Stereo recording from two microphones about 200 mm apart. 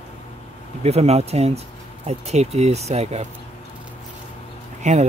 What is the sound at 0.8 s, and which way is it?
Speech, 30° right (ahead or behind).